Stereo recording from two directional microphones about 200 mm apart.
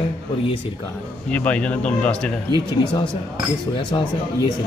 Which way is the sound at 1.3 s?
5° left (ahead or behind).